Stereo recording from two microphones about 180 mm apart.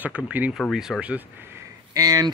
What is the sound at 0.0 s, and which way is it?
Speech, 10° right (ahead or behind).